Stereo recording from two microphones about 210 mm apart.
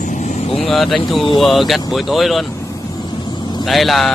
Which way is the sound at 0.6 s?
Centre (ahead or behind).